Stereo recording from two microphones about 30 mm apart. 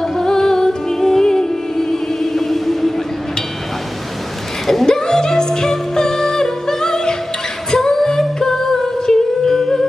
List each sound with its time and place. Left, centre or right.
0.0 s music: centre
4.8 s music: centre
7.7 s singing: centre